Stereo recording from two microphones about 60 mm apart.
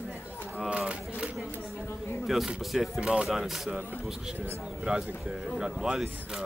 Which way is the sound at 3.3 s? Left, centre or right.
Centre.